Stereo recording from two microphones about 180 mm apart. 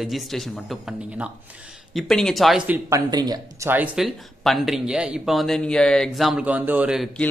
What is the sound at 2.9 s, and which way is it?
Speech, 20° right (ahead or behind).